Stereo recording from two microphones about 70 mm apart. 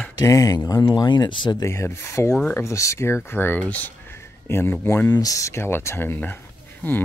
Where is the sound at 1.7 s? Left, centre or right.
Left.